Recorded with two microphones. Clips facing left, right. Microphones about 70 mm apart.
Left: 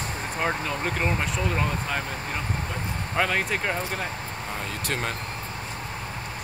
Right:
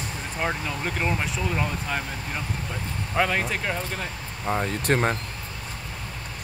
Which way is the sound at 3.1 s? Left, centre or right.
Centre.